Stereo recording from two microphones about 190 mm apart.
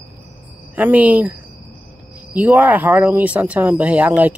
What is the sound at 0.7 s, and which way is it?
Speech, 10° right (ahead or behind).